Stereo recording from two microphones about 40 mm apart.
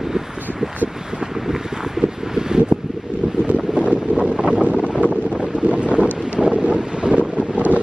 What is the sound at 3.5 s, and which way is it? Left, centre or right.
Wind noise, right.